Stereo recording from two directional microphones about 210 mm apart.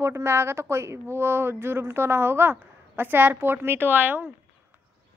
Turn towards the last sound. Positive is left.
turn(degrees=-10)  # may be behind; listen again after turning